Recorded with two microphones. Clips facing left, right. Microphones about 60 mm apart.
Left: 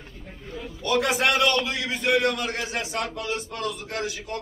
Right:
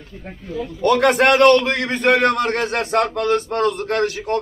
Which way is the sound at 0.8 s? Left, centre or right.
Right.